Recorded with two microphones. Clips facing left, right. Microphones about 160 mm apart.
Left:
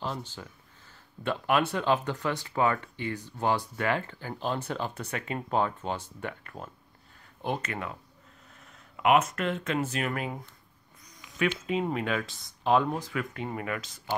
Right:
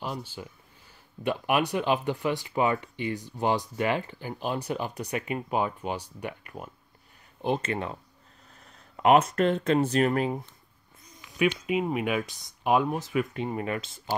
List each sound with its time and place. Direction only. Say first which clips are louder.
0.0 s speech: right 1 dB; 10° right (ahead or behind); by 10.3 s 35° right (ahead or behind)
11.3 s speech: right 3 dB; 10° right (ahead or behind)